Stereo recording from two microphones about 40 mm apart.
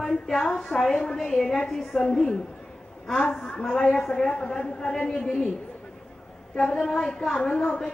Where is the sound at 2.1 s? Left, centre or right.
Centre.